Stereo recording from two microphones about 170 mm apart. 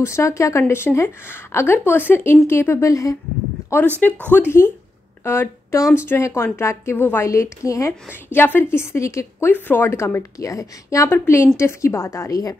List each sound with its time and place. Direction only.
0.0 s a woman's voice: 15° left (ahead or behind)